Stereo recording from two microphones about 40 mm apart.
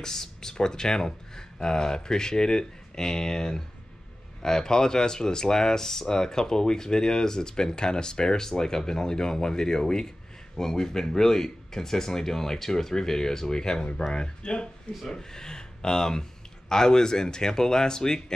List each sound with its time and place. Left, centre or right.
0.0 s speech: centre